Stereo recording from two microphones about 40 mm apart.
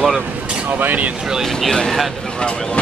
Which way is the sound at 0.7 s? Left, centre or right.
Right.